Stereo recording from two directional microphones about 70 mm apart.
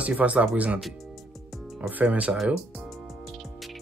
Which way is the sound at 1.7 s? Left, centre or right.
Right.